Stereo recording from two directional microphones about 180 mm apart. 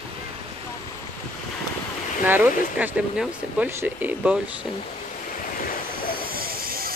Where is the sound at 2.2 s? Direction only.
10° right (ahead or behind).